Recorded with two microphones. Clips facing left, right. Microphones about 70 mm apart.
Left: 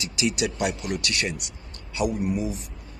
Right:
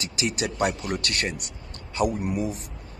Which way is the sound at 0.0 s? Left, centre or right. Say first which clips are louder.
Left 2 dB; right.